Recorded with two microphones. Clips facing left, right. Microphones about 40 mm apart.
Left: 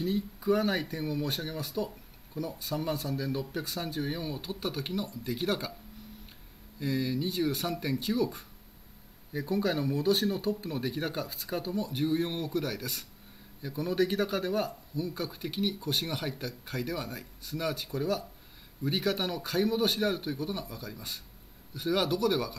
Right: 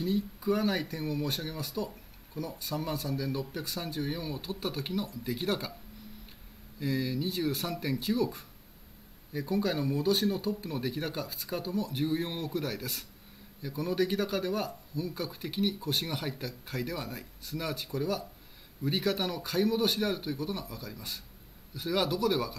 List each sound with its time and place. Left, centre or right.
0.0 s speech: centre
6.8 s speech: centre